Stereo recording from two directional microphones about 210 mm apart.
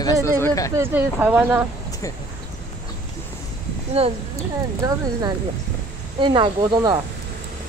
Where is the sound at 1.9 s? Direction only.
15° left (ahead or behind).